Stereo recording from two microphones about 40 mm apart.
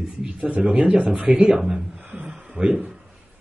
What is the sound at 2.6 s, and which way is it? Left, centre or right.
Speech, right.